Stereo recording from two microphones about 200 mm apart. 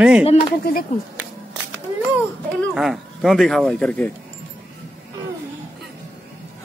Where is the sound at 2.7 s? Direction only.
Centre (ahead or behind).